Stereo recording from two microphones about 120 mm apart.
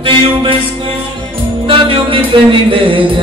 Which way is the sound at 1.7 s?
50° right (ahead or behind).